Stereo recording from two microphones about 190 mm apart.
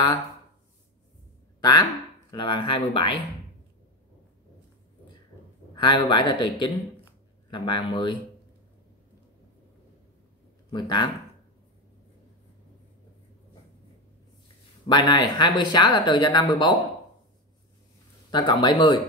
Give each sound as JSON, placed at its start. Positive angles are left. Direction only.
{"t": 1.6, "sound": "speech", "side_deg": 20}
{"t": 5.8, "sound": "speech", "side_deg": 25}
{"t": 10.7, "sound": "speech", "side_deg": 20}
{"t": 14.9, "sound": "speech", "side_deg": 20}
{"t": 18.3, "sound": "speech", "side_deg": 25}